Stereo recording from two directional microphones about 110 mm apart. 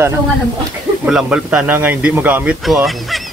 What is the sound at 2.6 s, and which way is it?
Speech, centre (ahead or behind).